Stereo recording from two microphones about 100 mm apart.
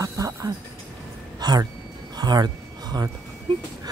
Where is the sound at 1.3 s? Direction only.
45° right (ahead or behind).